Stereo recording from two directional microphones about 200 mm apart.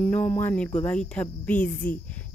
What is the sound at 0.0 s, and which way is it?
Speech, 5° left (ahead or behind).